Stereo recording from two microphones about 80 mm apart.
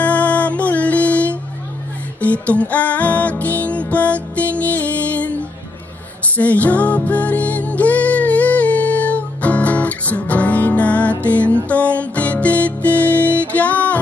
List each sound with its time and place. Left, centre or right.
0.0 s music: centre
6.3 s music: centre